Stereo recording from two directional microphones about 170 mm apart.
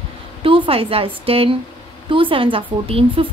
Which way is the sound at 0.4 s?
30° right (ahead or behind).